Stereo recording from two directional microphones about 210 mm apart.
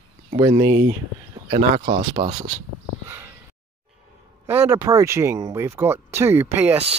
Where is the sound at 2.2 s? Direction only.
30° right (ahead or behind).